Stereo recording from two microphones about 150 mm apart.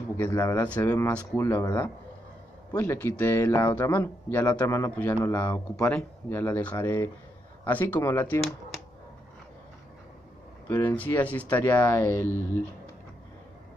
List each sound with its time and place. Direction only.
0.2 s speech: 20° left (ahead or behind)
10.7 s speech: 15° left (ahead or behind)